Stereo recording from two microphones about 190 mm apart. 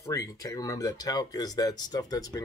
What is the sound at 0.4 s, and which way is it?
Speech, 15° left (ahead or behind).